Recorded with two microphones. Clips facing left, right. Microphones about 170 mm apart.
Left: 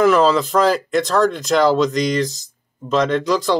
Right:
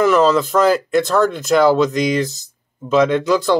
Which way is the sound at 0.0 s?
Centre (ahead or behind).